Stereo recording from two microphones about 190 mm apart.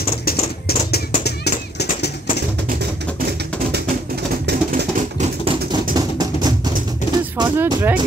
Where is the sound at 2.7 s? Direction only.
55° right (ahead or behind).